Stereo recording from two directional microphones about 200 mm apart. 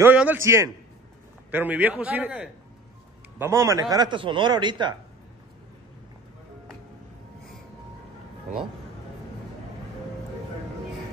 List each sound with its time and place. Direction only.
0.0 s a man's voice: 10° right (ahead or behind)